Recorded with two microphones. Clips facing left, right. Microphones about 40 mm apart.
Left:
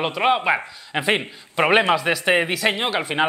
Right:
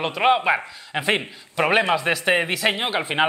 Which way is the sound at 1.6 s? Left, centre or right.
Centre.